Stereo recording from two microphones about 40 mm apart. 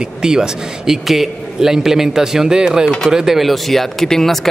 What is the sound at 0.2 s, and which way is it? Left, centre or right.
Speech, centre.